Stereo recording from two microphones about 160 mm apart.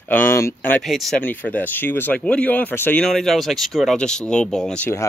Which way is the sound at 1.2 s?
10° left (ahead or behind).